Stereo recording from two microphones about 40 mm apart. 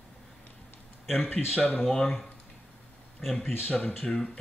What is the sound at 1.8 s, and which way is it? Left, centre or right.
Speech, centre.